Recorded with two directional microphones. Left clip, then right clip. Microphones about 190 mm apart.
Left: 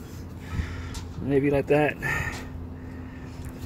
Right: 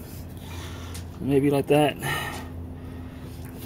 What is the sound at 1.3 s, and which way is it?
Speech, 15° right (ahead or behind).